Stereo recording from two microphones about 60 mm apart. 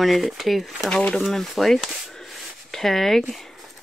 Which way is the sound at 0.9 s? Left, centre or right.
Centre.